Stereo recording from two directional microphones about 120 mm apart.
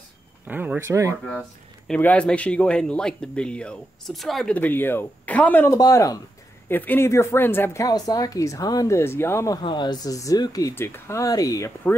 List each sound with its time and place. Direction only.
0.5 s speech: 15° right (ahead or behind)
1.9 s speech: 10° left (ahead or behind)
4.6 s speech: 15° left (ahead or behind)
5.8 s speech: 30° left (ahead or behind)
6.7 s speech: 15° left (ahead or behind)
7.8 s speech: 30° left (ahead or behind)
8.9 s speech: 20° left (ahead or behind)
9.6 s speech: 40° left (ahead or behind)
10.7 s speech: 20° left (ahead or behind)